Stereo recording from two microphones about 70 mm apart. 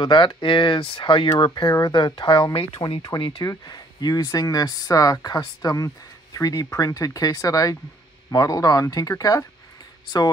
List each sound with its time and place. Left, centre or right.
0.0 s speech: left
1.4 s speech: left